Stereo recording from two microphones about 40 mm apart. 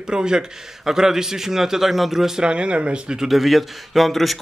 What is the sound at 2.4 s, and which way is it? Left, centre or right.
Speech, right.